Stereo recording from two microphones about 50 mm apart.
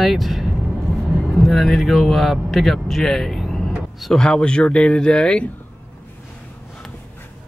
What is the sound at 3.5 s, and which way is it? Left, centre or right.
Vehicle, centre.